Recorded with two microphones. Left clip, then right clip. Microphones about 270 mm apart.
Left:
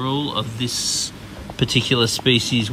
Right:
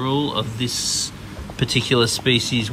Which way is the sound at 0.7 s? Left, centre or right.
Left.